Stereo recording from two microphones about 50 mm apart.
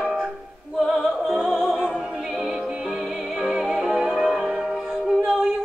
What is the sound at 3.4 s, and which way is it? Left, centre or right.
Music, centre.